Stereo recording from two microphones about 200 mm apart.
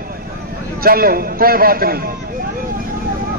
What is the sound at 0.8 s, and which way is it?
A man's voice, 50° right (ahead or behind).